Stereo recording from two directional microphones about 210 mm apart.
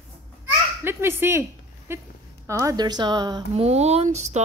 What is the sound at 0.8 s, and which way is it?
A woman's voice, 10° right (ahead or behind).